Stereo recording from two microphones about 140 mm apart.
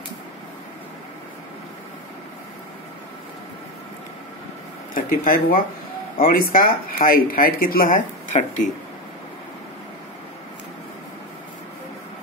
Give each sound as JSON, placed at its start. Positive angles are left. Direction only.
{"t": 4.9, "sound": "speech", "side_deg": 90}